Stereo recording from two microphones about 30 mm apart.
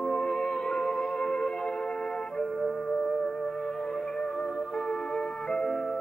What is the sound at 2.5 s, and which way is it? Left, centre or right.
Music, centre.